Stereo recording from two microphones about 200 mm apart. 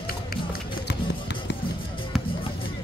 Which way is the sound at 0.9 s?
60° left (ahead or behind).